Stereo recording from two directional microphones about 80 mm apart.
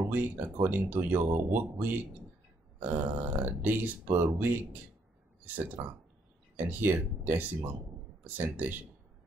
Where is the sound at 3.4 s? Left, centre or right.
Right.